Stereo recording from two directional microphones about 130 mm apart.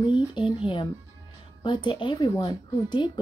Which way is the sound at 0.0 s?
40° left (ahead or behind).